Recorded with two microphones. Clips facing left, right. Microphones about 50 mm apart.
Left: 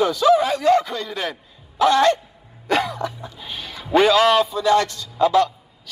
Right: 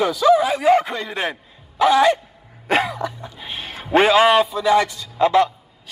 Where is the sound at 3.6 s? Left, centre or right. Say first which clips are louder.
Right 1 dB; right.